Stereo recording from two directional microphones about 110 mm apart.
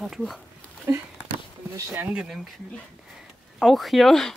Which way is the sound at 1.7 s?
20° right (ahead or behind).